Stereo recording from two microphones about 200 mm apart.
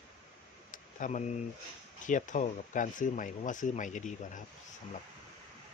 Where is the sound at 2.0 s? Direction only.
40° left (ahead or behind).